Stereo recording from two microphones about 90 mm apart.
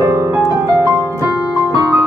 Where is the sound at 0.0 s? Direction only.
30° right (ahead or behind).